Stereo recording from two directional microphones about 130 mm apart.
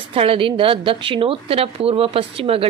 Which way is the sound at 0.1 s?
45° right (ahead or behind).